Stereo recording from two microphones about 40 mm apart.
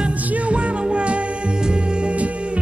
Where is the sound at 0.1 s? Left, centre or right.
Right.